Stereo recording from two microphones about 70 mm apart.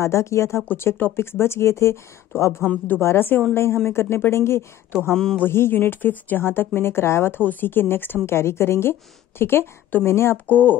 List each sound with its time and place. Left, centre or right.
0.0 s speech: left
5.1 s a man's voice: centre
5.4 s speech: left